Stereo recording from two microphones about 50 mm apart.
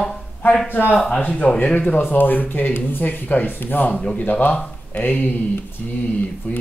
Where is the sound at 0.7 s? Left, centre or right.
Left.